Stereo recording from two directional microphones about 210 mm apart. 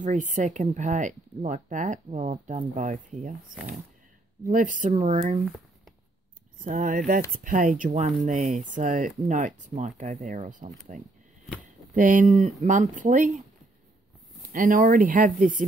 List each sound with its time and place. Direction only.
0.0 s speech: 35° right (ahead or behind)
6.6 s speech: 40° right (ahead or behind)
11.9 s speech: 40° right (ahead or behind)
14.5 s speech: 40° right (ahead or behind)